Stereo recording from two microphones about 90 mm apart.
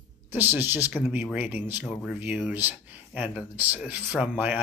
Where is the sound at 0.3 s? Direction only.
20° right (ahead or behind).